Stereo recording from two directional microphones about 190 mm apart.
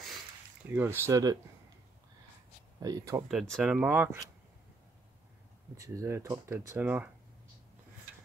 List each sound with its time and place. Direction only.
0.7 s speech: 10° right (ahead or behind)
2.8 s speech: 20° right (ahead or behind)
3.3 s speech: centre (ahead or behind)
5.8 s speech: 15° right (ahead or behind)